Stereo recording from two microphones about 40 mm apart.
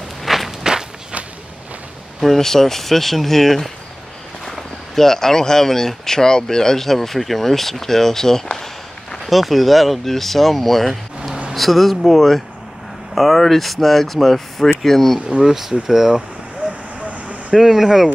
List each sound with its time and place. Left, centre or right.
0.2 s walk: centre
2.2 s speech: centre
9.2 s speech: centre
15.2 s speech: centre
16.6 s vehicle: right
17.6 s speech: centre